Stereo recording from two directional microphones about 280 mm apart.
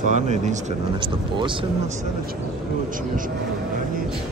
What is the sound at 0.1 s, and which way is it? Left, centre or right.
Speech, right.